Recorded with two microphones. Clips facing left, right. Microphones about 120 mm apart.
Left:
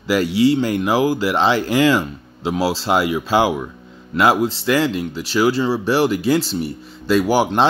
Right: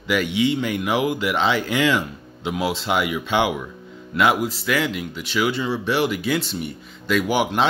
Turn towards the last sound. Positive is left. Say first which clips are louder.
# left 4 dB
turn(degrees=35)  # may be behind; listen again after turning